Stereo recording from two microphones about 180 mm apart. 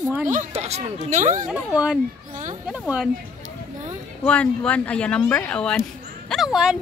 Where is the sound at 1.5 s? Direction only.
5° right (ahead or behind).